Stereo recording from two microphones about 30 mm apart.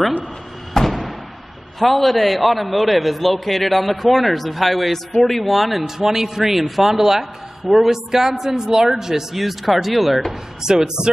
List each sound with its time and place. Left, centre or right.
0.8 s a sound: centre
1.8 s a man's voice: centre
5.9 s a man's voice: centre
9.4 s a man's voice: centre
10.6 s speech: right